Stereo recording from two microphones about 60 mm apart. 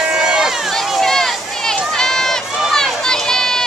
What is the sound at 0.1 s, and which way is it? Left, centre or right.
Run, centre.